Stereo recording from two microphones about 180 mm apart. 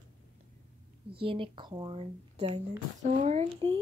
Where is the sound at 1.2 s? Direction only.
30° right (ahead or behind).